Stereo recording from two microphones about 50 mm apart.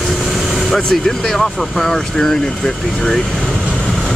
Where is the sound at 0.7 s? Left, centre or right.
Centre.